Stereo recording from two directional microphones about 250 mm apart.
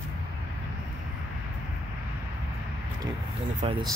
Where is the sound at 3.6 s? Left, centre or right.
Right.